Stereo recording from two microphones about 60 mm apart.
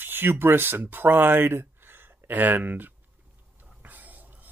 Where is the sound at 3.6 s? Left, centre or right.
Right.